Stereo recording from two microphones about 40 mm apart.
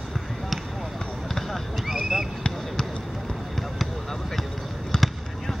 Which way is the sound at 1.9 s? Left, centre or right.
Centre.